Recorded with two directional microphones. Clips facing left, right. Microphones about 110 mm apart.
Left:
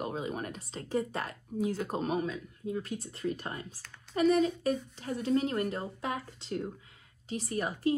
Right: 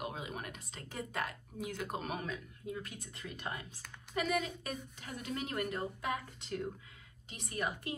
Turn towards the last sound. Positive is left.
turn(degrees=40)  # may be behind; listen again after turning